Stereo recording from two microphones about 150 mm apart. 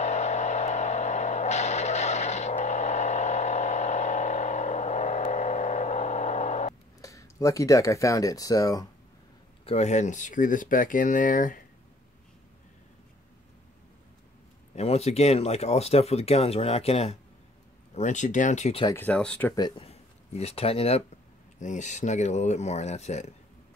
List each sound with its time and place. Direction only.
0.0 s a sound: 50° left (ahead or behind)
7.0 s speech: 20° left (ahead or behind)
9.7 s speech: 50° left (ahead or behind)
14.8 s speech: 45° left (ahead or behind)
17.9 s speech: 55° left (ahead or behind)
18.9 s speech: 10° left (ahead or behind)
19.8 s speech: 45° left (ahead or behind)
21.5 s speech: 55° left (ahead or behind)